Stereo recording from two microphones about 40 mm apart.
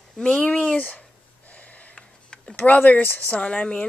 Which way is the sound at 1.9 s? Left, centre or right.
Left.